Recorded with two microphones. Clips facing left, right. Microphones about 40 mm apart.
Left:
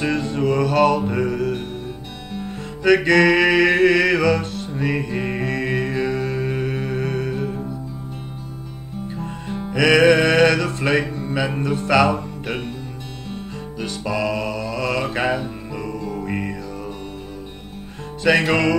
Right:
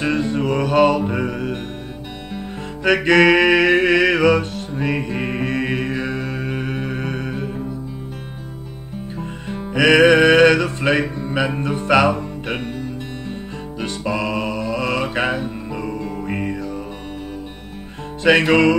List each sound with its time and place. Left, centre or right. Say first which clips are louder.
0.2 s music: even; right
2.8 s music: right 1 dB; right
4.7 s music: right 1 dB; right
5.4 s mantra: right 1 dB; right
9.7 s music: right 2 dB; right
13.7 s music: right 1 dB; right
18.2 s music: right 3 dB; right